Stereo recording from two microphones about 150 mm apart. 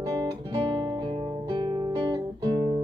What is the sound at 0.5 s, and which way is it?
Guitar, 30° right (ahead or behind).